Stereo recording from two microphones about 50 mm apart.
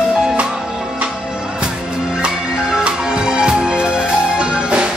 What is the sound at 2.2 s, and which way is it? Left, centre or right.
Music, centre.